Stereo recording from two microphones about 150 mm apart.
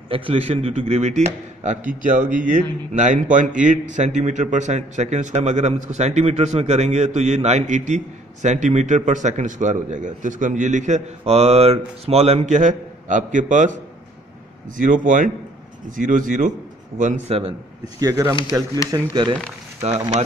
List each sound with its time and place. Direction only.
0.1 s speech: 40° right (ahead or behind); by 13.7 s 55° right (ahead or behind)
14.8 s a man's voice: 60° right (ahead or behind)
18.0 s speech: 20° right (ahead or behind)
19.8 s speech: 45° right (ahead or behind)